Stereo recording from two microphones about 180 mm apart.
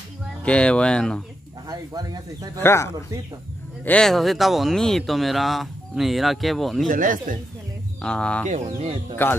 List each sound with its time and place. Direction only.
0.4 s speech: 5° left (ahead or behind)
1.7 s speech: 20° right (ahead or behind)
2.6 s speech: 15° left (ahead or behind)
6.9 s speech: 50° right (ahead or behind)
8.0 s speech: 5° left (ahead or behind)
8.6 s speech: 25° right (ahead or behind)
9.1 s speech: 10° left (ahead or behind)